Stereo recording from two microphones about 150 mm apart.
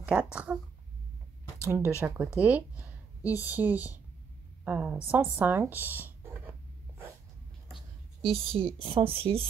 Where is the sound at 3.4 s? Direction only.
10° right (ahead or behind).